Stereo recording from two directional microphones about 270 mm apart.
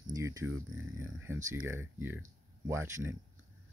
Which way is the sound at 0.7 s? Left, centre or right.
Centre.